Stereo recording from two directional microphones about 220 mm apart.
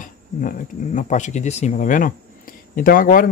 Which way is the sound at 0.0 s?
35° left (ahead or behind).